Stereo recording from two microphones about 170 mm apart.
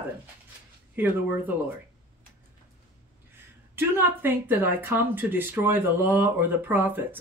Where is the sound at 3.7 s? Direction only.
10° right (ahead or behind).